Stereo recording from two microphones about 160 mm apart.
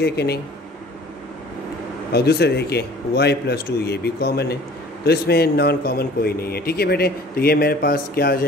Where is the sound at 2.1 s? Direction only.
85° left; by 8.4 s 70° left (ahead or behind).